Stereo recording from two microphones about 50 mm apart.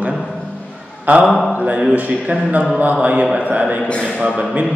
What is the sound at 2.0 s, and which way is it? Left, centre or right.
A man's voice, right.